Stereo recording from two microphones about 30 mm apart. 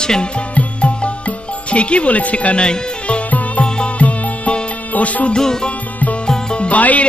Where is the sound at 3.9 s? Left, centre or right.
Left.